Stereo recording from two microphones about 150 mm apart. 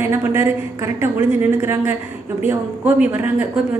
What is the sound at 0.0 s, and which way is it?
A woman's voice, 15° right (ahead or behind).